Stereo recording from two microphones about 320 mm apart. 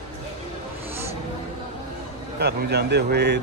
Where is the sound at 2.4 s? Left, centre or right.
Right.